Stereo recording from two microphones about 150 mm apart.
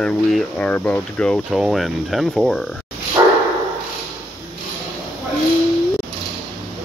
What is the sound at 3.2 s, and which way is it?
Dog, 25° right (ahead or behind).